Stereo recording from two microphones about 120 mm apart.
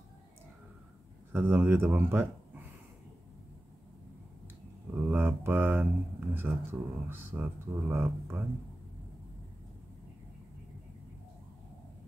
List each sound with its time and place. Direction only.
1.3 s speech: 15° right (ahead or behind)
5.0 s mantra: 20° right (ahead or behind)
6.3 s speech: 20° right (ahead or behind)